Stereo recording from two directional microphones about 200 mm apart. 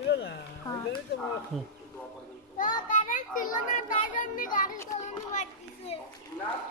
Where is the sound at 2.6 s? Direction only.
40° left (ahead or behind).